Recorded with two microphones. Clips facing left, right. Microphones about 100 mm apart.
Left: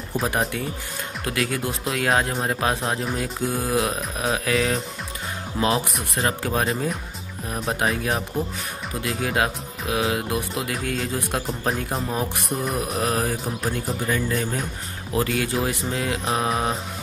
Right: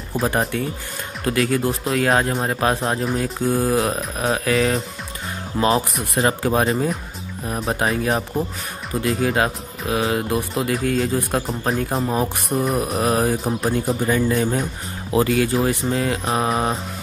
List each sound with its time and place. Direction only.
0.1 s speech: centre (ahead or behind)
14.0 s speech: 35° right (ahead or behind)
15.2 s speech: centre (ahead or behind)